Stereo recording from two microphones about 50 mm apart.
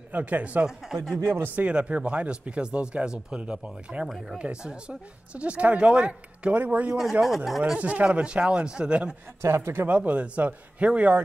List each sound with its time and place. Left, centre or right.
0.1 s speech: right
0.9 s speech: centre
1.3 s speech: right
1.6 s speech: right
6.6 s speech: right
7.0 s speech: centre
7.7 s speech: right
9.4 s speech: right
9.8 s speech: right